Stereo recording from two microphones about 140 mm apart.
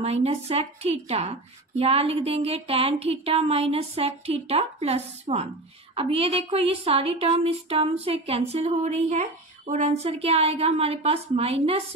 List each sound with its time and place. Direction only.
0.0 s a woman's voice: 45° right (ahead or behind)